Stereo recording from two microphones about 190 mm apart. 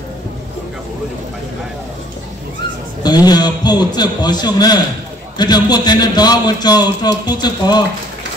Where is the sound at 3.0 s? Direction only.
20° left (ahead or behind).